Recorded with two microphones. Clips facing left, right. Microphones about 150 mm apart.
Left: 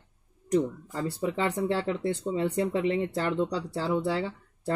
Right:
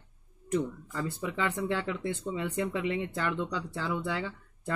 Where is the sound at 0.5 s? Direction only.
35° left (ahead or behind).